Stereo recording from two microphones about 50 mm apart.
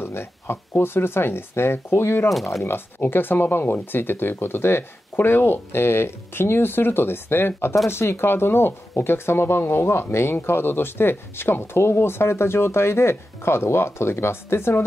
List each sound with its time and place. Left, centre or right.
0.0 s speech: left
2.3 s speech: centre
3.0 s speech: left